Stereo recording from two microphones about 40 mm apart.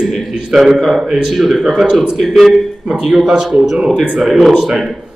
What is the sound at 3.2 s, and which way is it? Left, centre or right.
Speech, centre.